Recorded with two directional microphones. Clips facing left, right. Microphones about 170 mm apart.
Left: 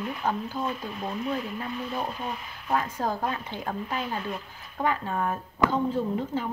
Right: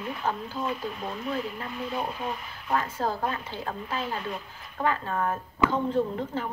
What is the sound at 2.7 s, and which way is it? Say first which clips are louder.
A woman's voice: even; 15° left (ahead or behind).